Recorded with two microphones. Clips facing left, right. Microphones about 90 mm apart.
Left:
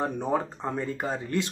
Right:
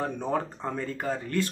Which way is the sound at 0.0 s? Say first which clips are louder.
Left 2 dB; 15° left (ahead or behind).